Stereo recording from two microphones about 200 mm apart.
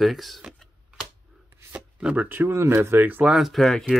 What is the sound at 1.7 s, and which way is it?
Speech, 5° right (ahead or behind).